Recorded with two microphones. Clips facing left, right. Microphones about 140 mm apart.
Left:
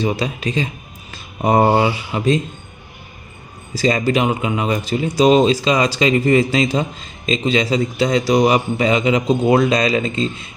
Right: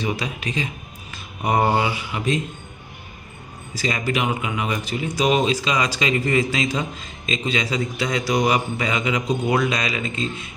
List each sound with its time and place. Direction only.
0.0 s speech: 30° left (ahead or behind)
1.1 s a sound: 30° left (ahead or behind)
2.1 s speech: 35° left (ahead or behind)
3.7 s a man's voice: 35° left (ahead or behind)